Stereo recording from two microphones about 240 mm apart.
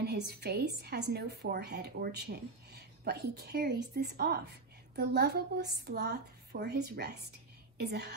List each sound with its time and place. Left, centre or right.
0.0 s a woman's voice: right